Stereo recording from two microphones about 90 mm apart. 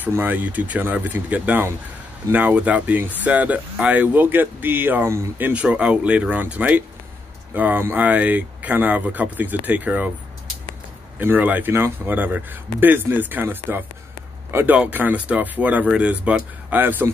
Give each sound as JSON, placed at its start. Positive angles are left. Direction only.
{"t": 0.0, "sound": "speech", "side_deg": -20}
{"t": 11.1, "sound": "speech", "side_deg": -20}